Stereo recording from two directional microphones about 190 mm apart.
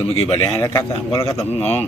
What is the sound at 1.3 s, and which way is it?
Speech, 35° left (ahead or behind).